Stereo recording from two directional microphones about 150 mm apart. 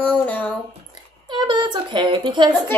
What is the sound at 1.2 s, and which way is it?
Speech, 30° right (ahead or behind).